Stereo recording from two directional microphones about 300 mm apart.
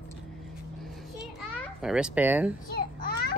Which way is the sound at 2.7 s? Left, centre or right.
Left.